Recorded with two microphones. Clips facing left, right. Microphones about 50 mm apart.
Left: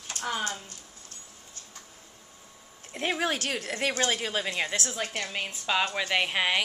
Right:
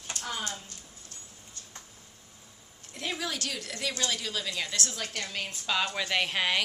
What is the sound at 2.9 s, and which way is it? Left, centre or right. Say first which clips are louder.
A woman's voice: left 6 dB; left.